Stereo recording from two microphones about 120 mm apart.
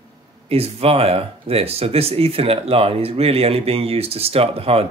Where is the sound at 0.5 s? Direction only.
55° right (ahead or behind).